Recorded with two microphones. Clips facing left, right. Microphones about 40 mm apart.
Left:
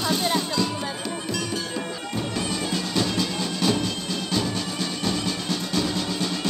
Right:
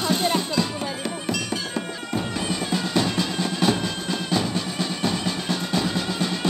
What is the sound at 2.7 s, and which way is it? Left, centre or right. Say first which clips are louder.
Music: right 3 dB; right.